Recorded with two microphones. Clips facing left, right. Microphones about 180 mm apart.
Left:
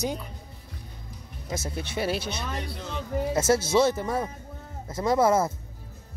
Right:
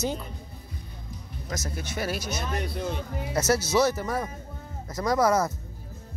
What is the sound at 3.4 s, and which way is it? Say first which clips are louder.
Speech: left 1 dB; 25° left (ahead or behind).